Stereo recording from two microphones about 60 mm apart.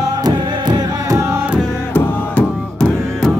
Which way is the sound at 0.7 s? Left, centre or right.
Right.